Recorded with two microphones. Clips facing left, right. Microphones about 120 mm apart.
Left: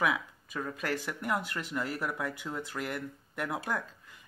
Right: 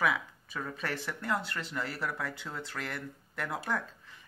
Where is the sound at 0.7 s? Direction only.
10° left (ahead or behind).